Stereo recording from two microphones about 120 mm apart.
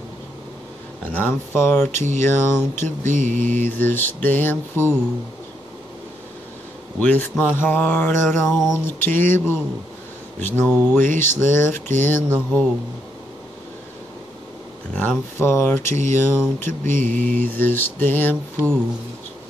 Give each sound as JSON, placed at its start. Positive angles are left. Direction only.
{"t": 1.1, "sound": "mantra", "side_deg": 20}
{"t": 1.9, "sound": "a sound", "side_deg": -85}
{"t": 2.2, "sound": "speech", "side_deg": 20}
{"t": 3.0, "sound": "mantra", "side_deg": -90}
{"t": 3.4, "sound": "mantra", "side_deg": 15}
{"t": 7.0, "sound": "mantra", "side_deg": 10}
{"t": 8.5, "sound": "a sound", "side_deg": -5}
{"t": 8.7, "sound": "mantra", "side_deg": 15}
{"t": 11.1, "sound": "speech", "side_deg": 20}
{"t": 12.0, "sound": "mantra", "side_deg": 15}
{"t": 15.0, "sound": "speech", "side_deg": 20}
{"t": 16.2, "sound": "mantra", "side_deg": 20}